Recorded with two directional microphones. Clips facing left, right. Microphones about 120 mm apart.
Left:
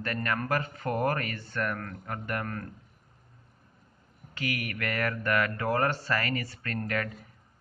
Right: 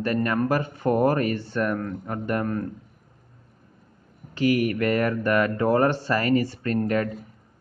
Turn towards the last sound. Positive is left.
turn(degrees=-25)  # may be behind; listen again after turning